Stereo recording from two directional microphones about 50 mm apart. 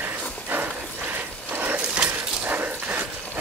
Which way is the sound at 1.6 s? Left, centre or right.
Right.